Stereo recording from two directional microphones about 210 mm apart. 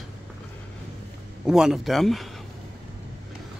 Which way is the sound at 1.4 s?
5° right (ahead or behind).